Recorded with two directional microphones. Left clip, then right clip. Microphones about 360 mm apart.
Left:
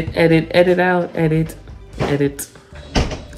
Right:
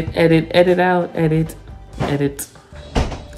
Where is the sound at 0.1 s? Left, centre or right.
Centre.